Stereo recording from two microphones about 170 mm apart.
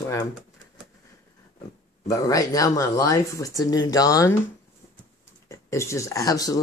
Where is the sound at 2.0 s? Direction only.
20° left (ahead or behind).